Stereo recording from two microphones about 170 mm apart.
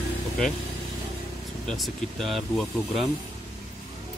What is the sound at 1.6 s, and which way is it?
Speech, 5° left (ahead or behind).